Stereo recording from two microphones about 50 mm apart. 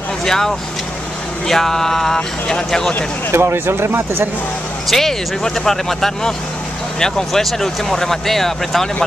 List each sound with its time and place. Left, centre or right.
0.2 s speech: centre
3.3 s speech: right
4.8 s speech: centre